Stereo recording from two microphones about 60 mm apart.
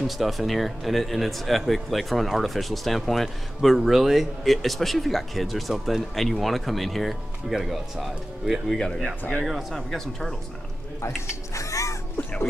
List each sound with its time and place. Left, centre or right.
0.0 s speech: centre
8.6 s speech: centre
9.4 s speech: centre
11.0 s a sound: left
12.2 s speech: left